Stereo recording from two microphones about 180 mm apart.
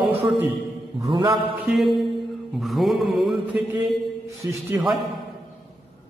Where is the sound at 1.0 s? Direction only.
30° right (ahead or behind).